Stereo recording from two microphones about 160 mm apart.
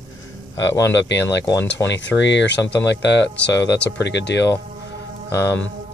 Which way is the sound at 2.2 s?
90° left.